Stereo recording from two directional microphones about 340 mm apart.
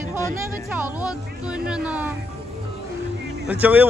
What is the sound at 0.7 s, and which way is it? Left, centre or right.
Speech, centre.